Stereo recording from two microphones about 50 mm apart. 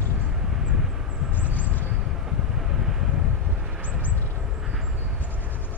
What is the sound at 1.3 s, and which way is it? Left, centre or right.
Vehicle, right.